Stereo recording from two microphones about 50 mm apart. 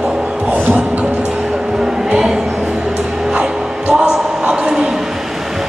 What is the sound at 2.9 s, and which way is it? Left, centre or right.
Music, centre.